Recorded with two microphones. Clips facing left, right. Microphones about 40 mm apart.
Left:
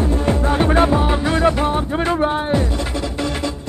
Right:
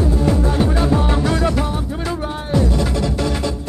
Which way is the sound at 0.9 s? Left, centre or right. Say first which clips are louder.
Left 1 dB; centre.